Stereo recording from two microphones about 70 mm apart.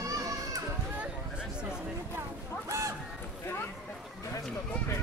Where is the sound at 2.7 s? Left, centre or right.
Right.